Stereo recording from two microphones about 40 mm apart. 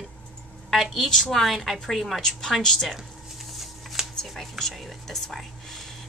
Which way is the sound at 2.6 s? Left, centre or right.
Centre.